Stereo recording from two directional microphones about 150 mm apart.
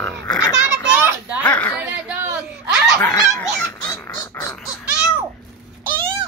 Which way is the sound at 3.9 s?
20° left (ahead or behind).